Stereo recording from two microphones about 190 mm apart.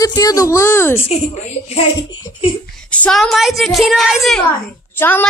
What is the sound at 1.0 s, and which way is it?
Speech, 30° left (ahead or behind).